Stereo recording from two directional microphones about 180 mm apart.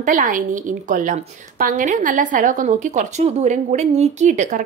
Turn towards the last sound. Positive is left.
turn(degrees=-40)  # may be behind; listen again after turning